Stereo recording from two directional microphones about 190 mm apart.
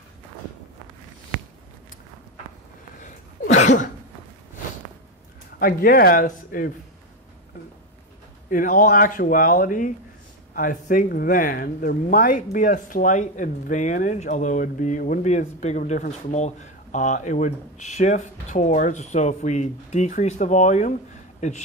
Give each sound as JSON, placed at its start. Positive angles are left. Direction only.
{"t": 3.0, "sound": "a sound", "side_deg": 40}
{"t": 5.6, "sound": "speech", "side_deg": 50}
{"t": 8.5, "sound": "speech", "side_deg": 45}